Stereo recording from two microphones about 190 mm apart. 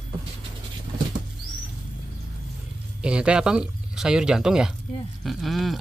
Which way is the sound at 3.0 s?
5° right (ahead or behind).